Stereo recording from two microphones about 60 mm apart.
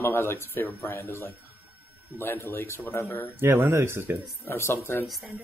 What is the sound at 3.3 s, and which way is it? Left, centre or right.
Speech, right.